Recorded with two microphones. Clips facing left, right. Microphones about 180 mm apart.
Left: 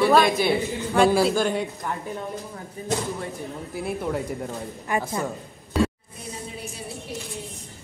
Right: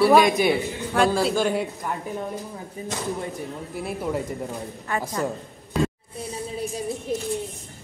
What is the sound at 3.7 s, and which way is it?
Speech, centre (ahead or behind).